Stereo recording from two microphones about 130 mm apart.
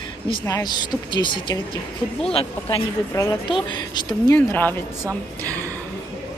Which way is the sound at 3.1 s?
25° left (ahead or behind).